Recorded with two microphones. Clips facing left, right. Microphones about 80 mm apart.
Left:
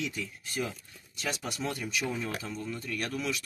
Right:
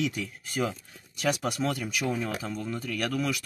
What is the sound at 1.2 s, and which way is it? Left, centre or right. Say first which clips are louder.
Speech: right 7 dB; right.